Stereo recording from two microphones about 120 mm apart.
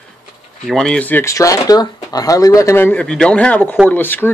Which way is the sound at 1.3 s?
25° left (ahead or behind).